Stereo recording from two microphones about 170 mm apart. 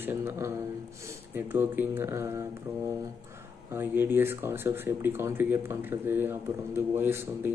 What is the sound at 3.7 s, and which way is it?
Speech, 15° right (ahead or behind).